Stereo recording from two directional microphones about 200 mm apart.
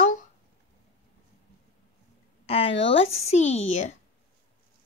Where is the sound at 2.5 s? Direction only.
30° left (ahead or behind).